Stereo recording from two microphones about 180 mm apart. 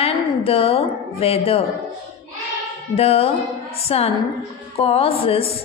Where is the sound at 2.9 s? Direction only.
35° left (ahead or behind).